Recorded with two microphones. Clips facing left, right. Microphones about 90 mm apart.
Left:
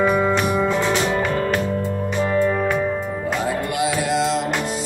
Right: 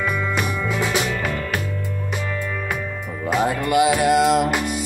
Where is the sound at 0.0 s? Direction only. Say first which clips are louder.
Left 6 dB; 40° left (ahead or behind).